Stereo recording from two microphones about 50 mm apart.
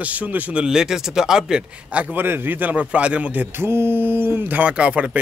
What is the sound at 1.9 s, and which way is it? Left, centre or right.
Speech, right.